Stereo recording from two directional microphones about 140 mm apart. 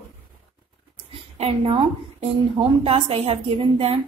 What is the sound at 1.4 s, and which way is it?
A woman's voice, 45° right (ahead or behind).